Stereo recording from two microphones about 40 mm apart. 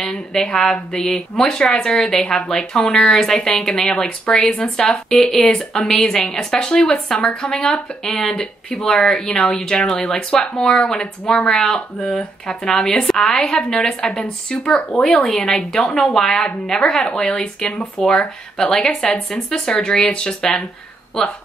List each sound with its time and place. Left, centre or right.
0.0 s speech: centre
5.3 s speech: centre